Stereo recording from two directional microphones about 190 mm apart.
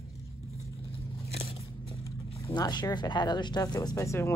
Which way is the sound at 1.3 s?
30° left (ahead or behind).